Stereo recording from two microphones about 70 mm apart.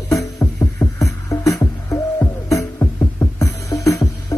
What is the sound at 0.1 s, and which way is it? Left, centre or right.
Music, left.